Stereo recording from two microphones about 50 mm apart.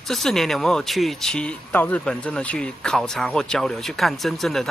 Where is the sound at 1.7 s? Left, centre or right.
Left.